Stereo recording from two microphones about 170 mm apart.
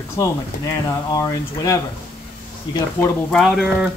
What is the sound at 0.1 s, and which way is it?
Speech, 20° left (ahead or behind).